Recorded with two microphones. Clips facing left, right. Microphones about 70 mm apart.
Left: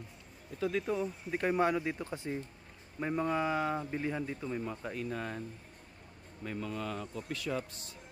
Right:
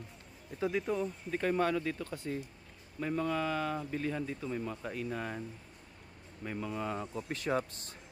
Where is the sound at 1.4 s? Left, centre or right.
Centre.